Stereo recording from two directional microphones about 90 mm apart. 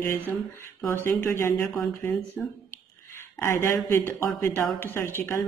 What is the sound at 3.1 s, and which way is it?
Speech, 30° left (ahead or behind).